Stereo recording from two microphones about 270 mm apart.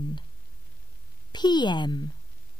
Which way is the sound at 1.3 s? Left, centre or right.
Centre.